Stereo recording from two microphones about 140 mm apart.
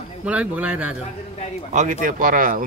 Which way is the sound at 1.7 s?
65° right (ahead or behind).